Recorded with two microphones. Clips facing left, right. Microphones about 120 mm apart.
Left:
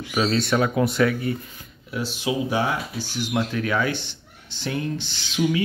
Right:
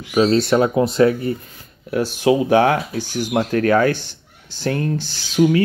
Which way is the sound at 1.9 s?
50° right (ahead or behind).